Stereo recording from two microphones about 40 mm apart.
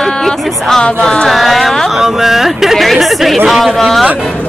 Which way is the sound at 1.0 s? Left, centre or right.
Centre.